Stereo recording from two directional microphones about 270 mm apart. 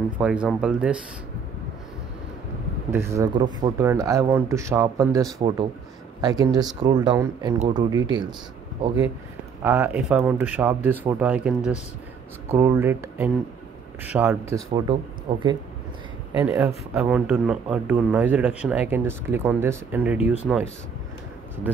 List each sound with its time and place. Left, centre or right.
0.2 s a man's voice: centre
2.9 s speech: centre
9.6 s speech: centre
16.3 s a man's voice: centre